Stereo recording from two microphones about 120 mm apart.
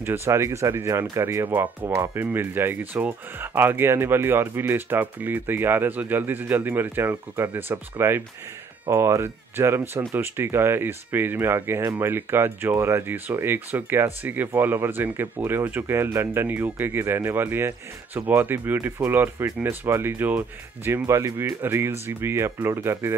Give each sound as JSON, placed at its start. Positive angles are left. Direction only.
{"t": 0.0, "sound": "speech", "side_deg": -20}